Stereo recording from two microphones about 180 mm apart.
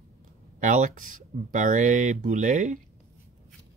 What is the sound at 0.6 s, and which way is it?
Speech, 45° right (ahead or behind).